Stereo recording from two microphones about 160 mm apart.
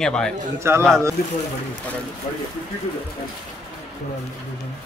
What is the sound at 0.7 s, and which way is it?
Speech, 15° right (ahead or behind).